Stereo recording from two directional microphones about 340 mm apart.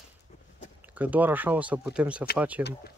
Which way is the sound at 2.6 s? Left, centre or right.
Left.